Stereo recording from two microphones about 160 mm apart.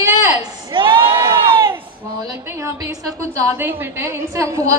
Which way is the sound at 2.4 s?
20° right (ahead or behind).